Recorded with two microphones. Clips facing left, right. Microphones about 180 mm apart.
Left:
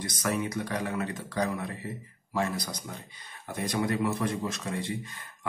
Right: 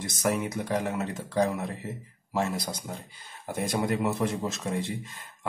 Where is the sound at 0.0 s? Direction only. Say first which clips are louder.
Right 2 dB; 25° right (ahead or behind).